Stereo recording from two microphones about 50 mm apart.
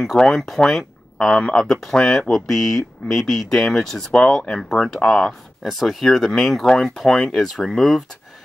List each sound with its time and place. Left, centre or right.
0.2 s speech: centre
4.1 s speech: centre
4.6 s speech: centre
5.0 s speech: centre
5.6 s speech: centre